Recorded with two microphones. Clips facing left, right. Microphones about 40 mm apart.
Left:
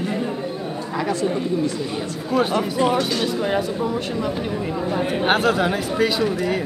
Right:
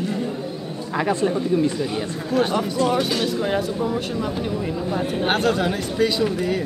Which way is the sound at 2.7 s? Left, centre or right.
Centre.